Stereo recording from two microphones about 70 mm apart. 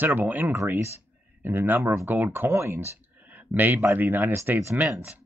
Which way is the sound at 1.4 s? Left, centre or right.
Right.